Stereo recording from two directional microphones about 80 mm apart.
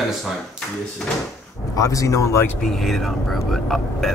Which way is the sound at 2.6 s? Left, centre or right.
Centre.